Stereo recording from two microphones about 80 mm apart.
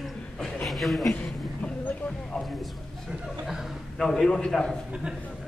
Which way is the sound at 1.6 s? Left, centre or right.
Centre.